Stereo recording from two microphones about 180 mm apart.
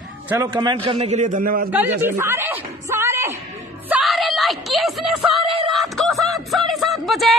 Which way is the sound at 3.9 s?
Centre (ahead or behind).